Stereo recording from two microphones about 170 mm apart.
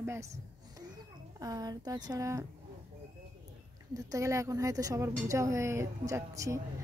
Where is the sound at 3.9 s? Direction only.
20° right (ahead or behind).